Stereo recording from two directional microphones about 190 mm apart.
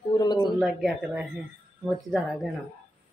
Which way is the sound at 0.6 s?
Centre (ahead or behind).